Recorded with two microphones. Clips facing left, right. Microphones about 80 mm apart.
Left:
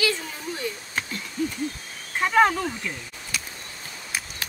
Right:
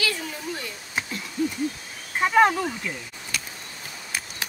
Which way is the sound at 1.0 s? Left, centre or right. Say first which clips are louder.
Right 2 dB; centre.